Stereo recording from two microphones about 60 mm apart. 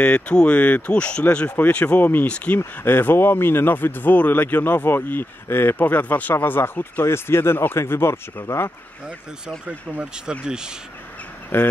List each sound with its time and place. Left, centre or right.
0.0 s speech: centre; by 2.2 s left
2.2 s speech: left
2.6 s speech: left
10.4 s speech: centre
11.5 s speech: left